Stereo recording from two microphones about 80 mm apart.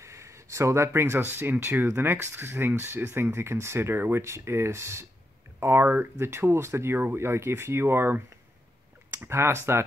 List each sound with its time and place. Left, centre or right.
0.0 s speech: right